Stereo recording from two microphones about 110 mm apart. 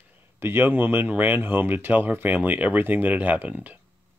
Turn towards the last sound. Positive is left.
turn(degrees=-15)  # may be behind; listen again after turning